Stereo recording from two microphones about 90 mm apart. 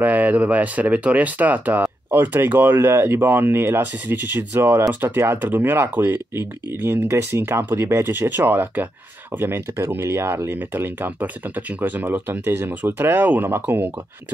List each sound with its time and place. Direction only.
0.0 s speech: 15° right (ahead or behind)